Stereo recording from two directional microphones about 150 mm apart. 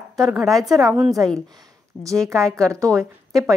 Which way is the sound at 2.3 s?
5° left (ahead or behind).